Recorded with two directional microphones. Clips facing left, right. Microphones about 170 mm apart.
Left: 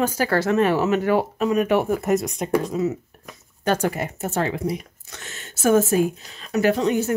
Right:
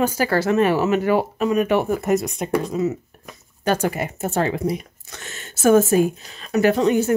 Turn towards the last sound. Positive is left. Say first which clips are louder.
# right 3 dB
turn(degrees=-55)  # may be behind; listen again after turning